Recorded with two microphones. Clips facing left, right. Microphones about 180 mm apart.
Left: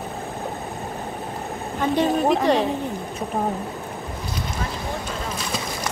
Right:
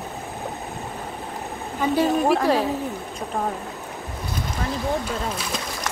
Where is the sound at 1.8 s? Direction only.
5° right (ahead or behind).